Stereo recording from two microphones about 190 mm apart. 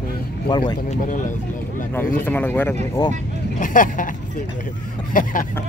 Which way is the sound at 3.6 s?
45° left (ahead or behind).